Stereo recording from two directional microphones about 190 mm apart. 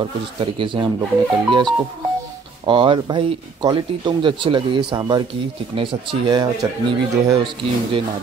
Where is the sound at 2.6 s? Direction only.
25° right (ahead or behind).